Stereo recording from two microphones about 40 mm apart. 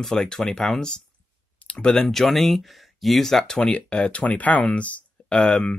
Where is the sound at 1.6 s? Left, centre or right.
Left.